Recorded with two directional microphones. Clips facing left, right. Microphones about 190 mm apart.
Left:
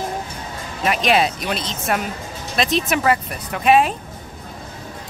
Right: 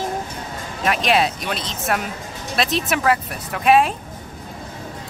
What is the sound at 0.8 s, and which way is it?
Speech, centre (ahead or behind).